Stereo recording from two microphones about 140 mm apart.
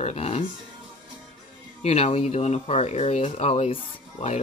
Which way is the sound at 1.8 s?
50° left (ahead or behind).